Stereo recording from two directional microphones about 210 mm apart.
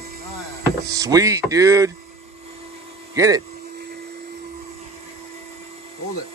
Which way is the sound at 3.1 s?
15° right (ahead or behind).